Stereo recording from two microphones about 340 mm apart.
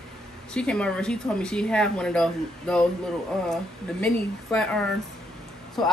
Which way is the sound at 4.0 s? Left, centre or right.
Centre.